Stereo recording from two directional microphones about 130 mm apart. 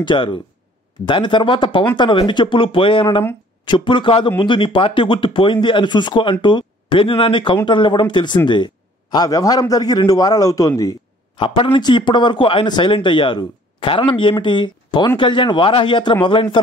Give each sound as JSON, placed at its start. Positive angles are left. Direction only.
{"t": 0.0, "sound": "a man's voice", "side_deg": 40}
{"t": 11.3, "sound": "speech", "side_deg": 40}